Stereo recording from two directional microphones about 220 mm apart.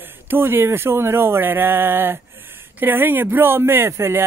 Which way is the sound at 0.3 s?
10° right (ahead or behind).